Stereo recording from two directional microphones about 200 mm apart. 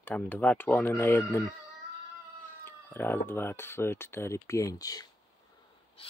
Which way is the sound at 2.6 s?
10° left (ahead or behind).